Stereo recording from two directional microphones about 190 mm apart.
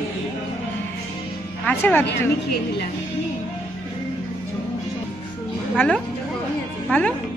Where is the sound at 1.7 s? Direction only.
10° left (ahead or behind).